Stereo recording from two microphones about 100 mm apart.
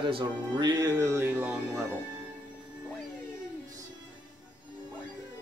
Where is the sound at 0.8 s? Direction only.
30° right (ahead or behind).